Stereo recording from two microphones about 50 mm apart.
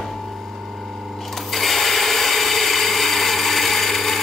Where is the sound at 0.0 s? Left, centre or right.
Centre.